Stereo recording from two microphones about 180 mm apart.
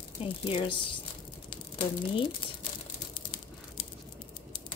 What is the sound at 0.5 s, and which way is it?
Speech, 30° left (ahead or behind).